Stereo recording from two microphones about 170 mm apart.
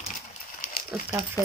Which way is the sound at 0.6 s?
50° left (ahead or behind).